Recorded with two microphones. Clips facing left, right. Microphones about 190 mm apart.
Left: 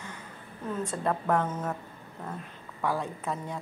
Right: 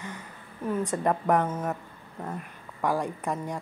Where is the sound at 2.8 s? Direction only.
15° right (ahead or behind).